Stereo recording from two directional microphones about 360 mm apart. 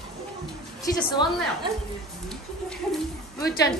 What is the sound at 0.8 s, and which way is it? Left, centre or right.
Speech, centre.